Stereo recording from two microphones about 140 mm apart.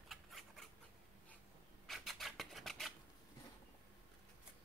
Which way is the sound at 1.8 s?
Centre (ahead or behind).